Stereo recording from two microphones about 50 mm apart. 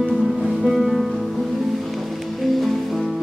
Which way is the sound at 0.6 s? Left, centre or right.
Centre.